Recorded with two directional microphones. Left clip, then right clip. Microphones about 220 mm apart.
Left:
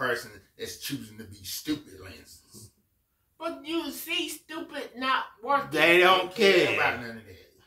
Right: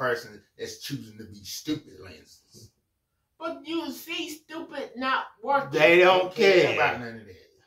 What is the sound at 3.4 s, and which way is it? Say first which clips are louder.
A woman's voice: even; 20° right (ahead or behind).